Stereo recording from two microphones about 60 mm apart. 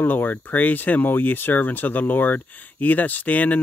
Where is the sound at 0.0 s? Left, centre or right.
Left.